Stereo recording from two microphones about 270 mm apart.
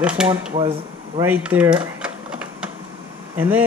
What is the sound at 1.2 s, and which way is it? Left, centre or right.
Speech, centre.